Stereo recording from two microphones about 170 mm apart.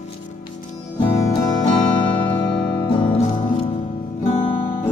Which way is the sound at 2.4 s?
30° left (ahead or behind).